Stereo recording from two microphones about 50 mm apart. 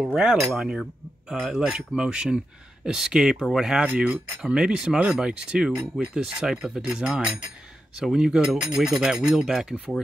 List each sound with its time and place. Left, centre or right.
0.0 s speech: centre
1.5 s speech: centre
3.8 s speech: right
4.4 s speech: centre